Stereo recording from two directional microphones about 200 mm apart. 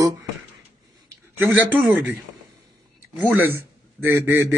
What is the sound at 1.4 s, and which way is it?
Speech, 10° right (ahead or behind).